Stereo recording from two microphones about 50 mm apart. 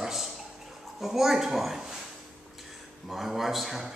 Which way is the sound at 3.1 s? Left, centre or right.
Centre.